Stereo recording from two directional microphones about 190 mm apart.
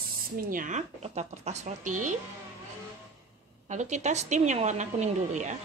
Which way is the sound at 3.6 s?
40° right (ahead or behind).